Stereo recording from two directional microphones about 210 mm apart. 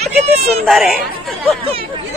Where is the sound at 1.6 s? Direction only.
25° right (ahead or behind).